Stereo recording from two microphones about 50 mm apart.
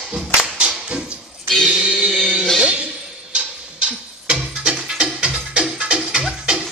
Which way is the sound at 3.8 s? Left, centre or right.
Right.